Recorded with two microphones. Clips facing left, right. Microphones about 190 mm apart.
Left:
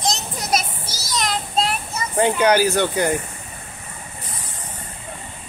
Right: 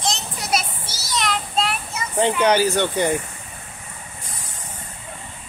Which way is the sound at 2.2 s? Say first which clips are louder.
Left 1 dB; 5° left (ahead or behind).